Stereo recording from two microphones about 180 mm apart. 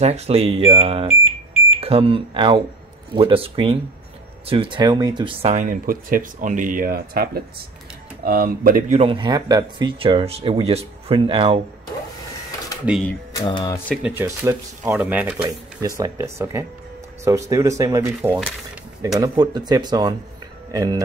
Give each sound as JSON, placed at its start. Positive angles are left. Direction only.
{"t": 0.0, "sound": "speech", "side_deg": -35}
{"t": 9.0, "sound": "speech", "side_deg": -25}
{"t": 13.4, "sound": "speech", "side_deg": 20}
{"t": 14.0, "sound": "speech", "side_deg": -15}